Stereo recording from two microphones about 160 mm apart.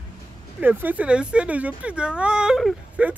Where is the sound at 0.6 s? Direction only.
10° right (ahead or behind).